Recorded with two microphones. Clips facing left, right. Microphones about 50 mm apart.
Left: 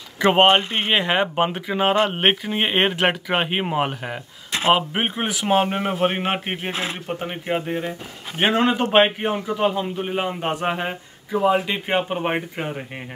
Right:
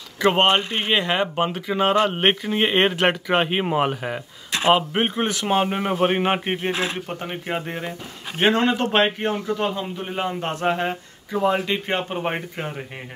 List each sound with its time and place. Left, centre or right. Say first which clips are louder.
0.2 s a man's voice: left 2 dB; centre